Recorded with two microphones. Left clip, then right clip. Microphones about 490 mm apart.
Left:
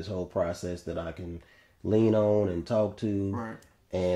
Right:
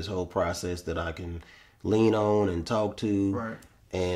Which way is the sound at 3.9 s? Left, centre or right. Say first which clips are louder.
Even; left.